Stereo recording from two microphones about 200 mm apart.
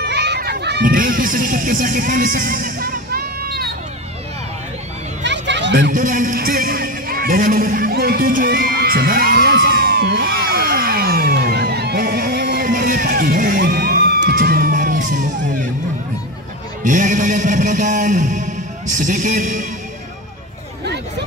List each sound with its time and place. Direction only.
0.0 s children playing: 55° right (ahead or behind)
5.2 s a sound: 60° right (ahead or behind)
5.9 s music: 40° right (ahead or behind)
16.8 s music: 40° right (ahead or behind)